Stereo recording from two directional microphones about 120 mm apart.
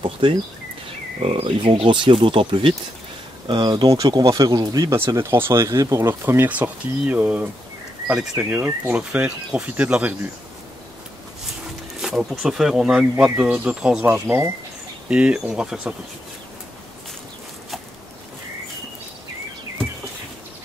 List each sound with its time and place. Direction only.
0.0 s speech: 45° right (ahead or behind); by 10.1 s 10° right (ahead or behind)
12.0 s speech: 5° right (ahead or behind)
14.2 s speech: 20° right (ahead or behind)